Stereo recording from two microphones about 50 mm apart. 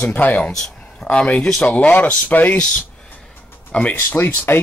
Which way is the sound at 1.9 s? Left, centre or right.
Left.